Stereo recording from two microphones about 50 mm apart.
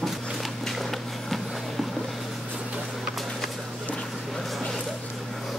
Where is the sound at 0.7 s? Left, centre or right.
Centre.